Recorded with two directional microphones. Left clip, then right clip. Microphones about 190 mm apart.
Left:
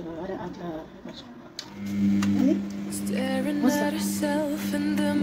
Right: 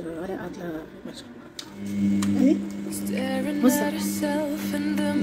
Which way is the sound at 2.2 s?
5° right (ahead or behind).